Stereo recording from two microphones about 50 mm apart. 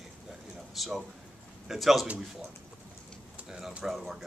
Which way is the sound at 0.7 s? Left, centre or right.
Centre.